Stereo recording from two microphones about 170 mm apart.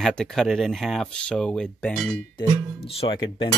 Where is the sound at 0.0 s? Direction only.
5° left (ahead or behind).